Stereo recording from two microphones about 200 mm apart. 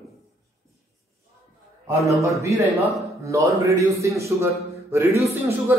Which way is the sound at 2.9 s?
15° right (ahead or behind).